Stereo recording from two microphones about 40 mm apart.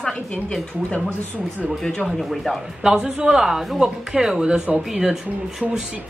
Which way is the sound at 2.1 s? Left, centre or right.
Centre.